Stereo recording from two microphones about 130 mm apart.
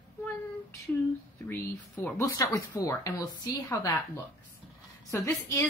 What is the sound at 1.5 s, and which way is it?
Speech, 20° left (ahead or behind).